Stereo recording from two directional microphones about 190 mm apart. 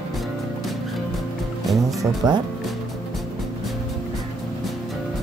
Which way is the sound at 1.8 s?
20° right (ahead or behind).